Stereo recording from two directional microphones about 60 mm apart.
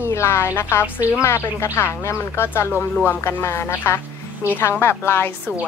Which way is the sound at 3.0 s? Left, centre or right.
Left.